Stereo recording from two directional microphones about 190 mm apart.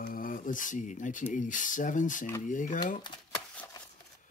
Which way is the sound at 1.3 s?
45° left (ahead or behind).